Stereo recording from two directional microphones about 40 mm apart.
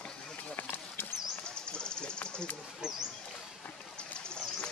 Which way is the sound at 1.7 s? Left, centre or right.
Left.